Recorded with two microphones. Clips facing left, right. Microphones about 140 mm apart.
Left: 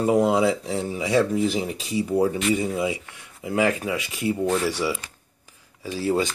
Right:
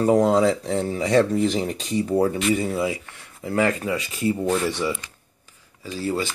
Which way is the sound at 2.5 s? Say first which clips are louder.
Right 1 dB; 20° left (ahead or behind).